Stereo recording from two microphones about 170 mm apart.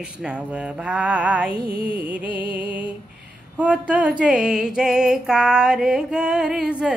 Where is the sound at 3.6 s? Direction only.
5° right (ahead or behind).